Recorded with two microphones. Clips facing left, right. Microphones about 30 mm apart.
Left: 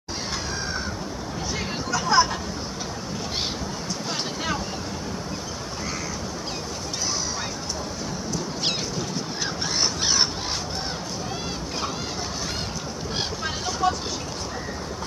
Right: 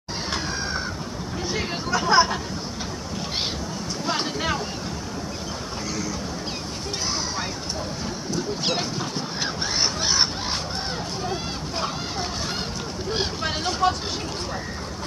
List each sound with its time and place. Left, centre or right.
1.5 s a sound: right
4.1 s vehicle: right
9.8 s crow: centre
13.4 s vehicle: right